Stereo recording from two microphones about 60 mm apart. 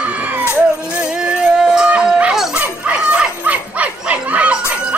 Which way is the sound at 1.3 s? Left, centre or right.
Centre.